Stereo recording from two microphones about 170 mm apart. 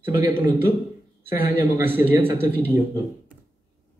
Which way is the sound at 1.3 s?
60° left (ahead or behind).